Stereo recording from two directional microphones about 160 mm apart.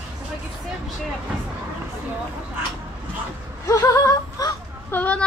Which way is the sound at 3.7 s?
20° left (ahead or behind).